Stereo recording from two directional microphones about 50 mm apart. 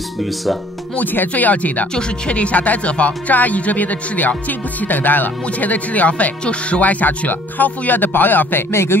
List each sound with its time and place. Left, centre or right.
0.9 s speech: left